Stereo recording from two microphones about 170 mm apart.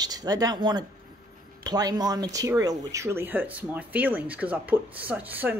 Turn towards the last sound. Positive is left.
turn(degrees=-10)  # may be behind; listen again after turning